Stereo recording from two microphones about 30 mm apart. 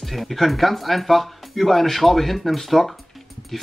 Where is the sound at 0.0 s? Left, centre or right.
Centre.